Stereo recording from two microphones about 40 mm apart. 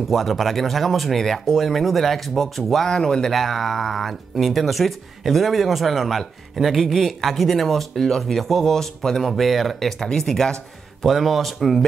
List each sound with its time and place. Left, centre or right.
0.1 s speech: centre
2.9 s speech: centre
11.0 s speech: centre